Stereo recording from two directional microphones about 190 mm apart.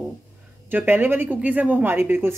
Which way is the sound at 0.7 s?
10° right (ahead or behind).